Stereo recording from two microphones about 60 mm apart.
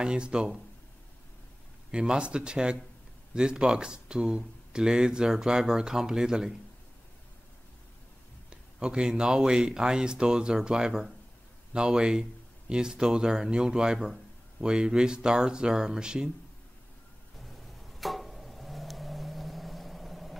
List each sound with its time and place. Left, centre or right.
0.0 s speech: centre
1.9 s speech: centre
8.5 s speech: centre
17.5 s vehicle: centre